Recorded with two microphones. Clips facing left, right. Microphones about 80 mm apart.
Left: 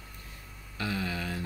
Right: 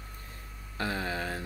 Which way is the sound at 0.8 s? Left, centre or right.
Right.